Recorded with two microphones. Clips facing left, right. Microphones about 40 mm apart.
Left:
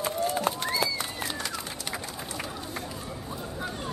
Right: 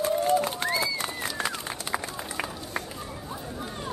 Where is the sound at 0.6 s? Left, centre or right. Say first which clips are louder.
Right 1 dB; right.